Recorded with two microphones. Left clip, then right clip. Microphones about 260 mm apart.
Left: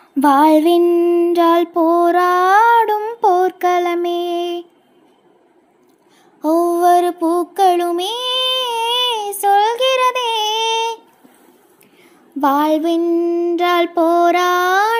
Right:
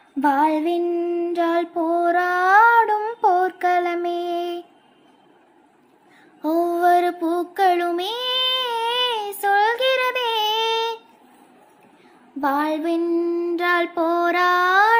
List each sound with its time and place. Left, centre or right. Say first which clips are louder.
0.2 s child singing: left 7 dB; left
6.4 s child singing: left 5 dB; centre
12.4 s child singing: left 7 dB; left